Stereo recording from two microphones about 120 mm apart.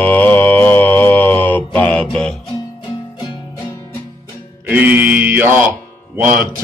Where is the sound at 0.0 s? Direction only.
15° left (ahead or behind).